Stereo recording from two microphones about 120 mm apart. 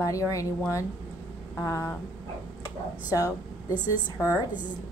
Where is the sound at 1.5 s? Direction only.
20° left (ahead or behind).